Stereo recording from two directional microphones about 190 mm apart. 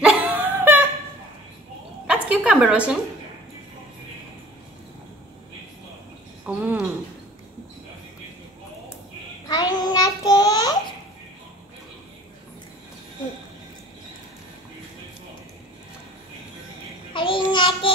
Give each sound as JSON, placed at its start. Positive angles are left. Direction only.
{"t": 0.0, "sound": "dog", "side_deg": -10}
{"t": 2.0, "sound": "a woman's voice", "side_deg": -5}
{"t": 6.4, "sound": "a sound", "side_deg": -5}
{"t": 9.5, "sound": "child singing", "side_deg": 20}
{"t": 17.1, "sound": "child singing", "side_deg": 25}